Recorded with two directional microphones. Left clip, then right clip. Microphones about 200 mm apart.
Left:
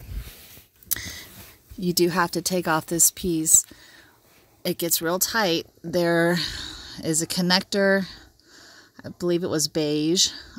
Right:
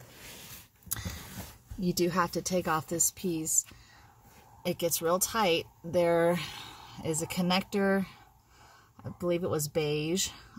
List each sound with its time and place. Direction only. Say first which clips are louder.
1.8 s speech: left 7 dB; 35° left (ahead or behind)
4.6 s speech: left 4 dB; 40° left (ahead or behind)
9.2 s speech: left 6 dB; 40° left (ahead or behind)